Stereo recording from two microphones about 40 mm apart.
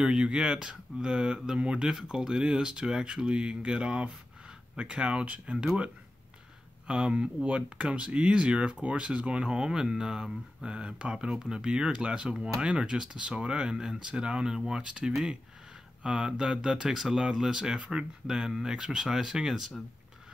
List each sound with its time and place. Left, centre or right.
0.0 s speech: right
2.0 s speech: centre
5.5 s speech: right
6.9 s speech: right
10.6 s speech: right
11.2 s speech: centre
17.7 s speech: right
18.2 s speech: centre